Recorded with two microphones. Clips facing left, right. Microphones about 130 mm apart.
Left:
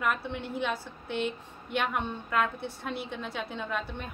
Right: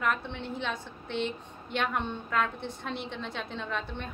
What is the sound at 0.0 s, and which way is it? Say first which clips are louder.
A woman's voice: even; 5° left (ahead or behind).